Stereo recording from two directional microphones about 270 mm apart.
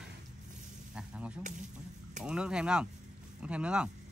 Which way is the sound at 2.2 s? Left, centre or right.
Centre.